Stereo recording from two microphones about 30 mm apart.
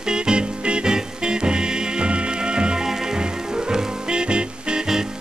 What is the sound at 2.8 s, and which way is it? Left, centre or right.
Music, centre.